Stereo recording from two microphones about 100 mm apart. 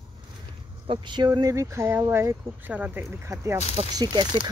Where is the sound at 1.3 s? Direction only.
35° right (ahead or behind); by 3.0 s 15° right (ahead or behind).